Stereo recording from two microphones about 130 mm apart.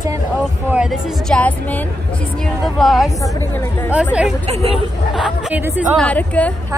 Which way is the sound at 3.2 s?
25° left (ahead or behind).